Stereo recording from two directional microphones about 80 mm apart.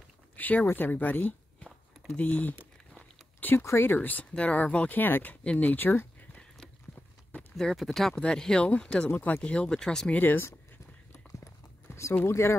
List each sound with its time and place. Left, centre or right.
0.4 s a sound: left
0.7 s speech: left
7.5 s speech: centre
10.2 s speech: left
11.3 s a sound: left
12.3 s speech: left